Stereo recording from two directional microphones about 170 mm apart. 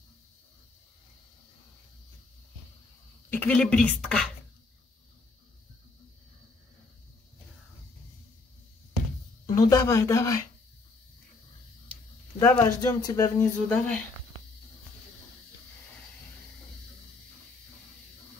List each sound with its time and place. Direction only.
3.3 s speech: 5° left (ahead or behind)
9.5 s speech: 20° left (ahead or behind)
12.4 s speech: 20° left (ahead or behind)